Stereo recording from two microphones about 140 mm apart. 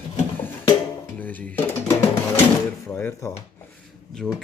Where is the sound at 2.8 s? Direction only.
15° left (ahead or behind).